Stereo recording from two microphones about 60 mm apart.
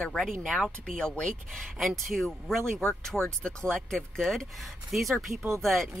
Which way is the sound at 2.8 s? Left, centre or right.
Centre.